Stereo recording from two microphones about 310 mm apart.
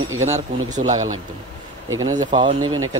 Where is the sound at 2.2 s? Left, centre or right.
Centre.